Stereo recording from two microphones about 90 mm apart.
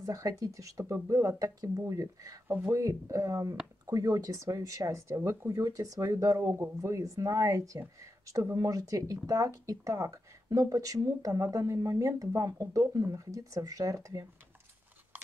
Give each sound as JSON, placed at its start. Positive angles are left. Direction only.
{"t": 0.0, "sound": "speech", "side_deg": -40}